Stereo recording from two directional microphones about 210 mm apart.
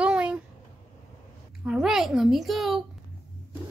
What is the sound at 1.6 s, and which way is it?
A child's voice, 5° right (ahead or behind).